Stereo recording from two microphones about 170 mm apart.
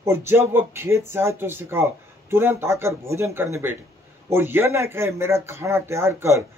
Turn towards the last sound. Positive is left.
turn(degrees=-15)  # may be behind; listen again after turning